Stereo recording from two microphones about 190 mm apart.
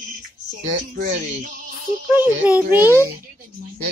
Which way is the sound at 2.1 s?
10° right (ahead or behind).